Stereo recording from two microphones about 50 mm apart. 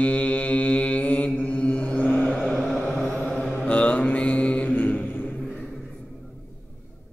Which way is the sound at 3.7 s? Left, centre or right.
Left.